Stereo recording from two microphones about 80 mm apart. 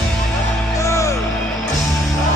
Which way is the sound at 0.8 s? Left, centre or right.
Left.